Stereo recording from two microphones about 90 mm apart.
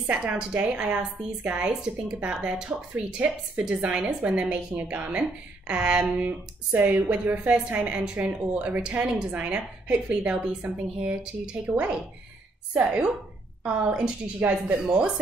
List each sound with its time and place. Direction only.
0.1 s speech: 15° right (ahead or behind)